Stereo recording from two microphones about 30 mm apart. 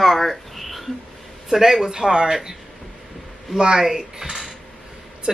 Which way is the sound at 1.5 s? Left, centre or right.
Centre.